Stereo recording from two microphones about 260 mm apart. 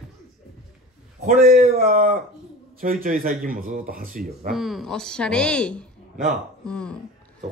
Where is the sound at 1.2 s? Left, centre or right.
Right.